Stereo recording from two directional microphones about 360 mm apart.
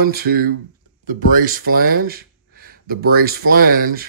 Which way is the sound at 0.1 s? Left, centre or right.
Right.